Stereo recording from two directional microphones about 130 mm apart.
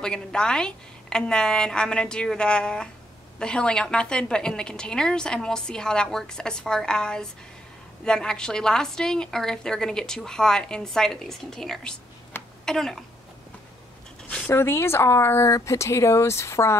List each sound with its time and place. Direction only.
0.0 s a woman's voice: 5° left (ahead or behind)
14.5 s speech: 20° left (ahead or behind)